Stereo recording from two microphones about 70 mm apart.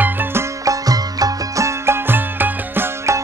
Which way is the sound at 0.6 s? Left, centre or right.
Right.